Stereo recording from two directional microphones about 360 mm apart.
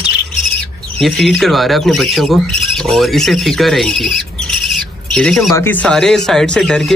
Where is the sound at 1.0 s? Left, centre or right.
Centre.